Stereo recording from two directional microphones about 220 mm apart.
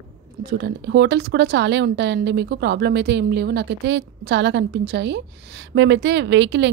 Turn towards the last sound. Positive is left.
turn(degrees=-55)  # may be behind; listen again after turning